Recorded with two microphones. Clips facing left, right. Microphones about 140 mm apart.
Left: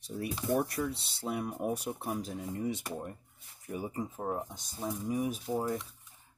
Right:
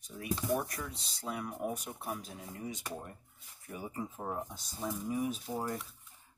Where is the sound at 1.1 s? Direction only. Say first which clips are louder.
Left 4 dB; 30° left (ahead or behind).